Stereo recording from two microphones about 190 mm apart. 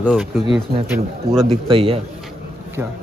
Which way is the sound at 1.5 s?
30° right (ahead or behind).